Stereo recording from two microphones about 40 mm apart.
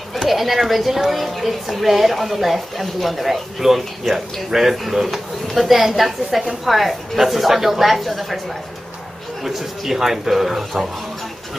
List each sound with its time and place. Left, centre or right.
0.3 s a woman's voice: centre
9.4 s a man's voice: centre